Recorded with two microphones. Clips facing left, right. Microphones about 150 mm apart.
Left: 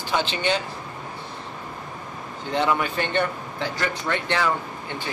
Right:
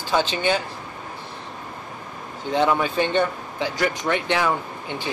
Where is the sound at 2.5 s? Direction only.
15° right (ahead or behind).